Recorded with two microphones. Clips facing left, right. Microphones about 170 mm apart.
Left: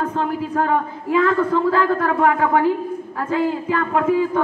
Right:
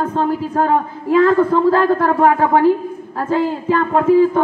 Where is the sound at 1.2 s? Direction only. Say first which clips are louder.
Right 5 dB; 35° right (ahead or behind).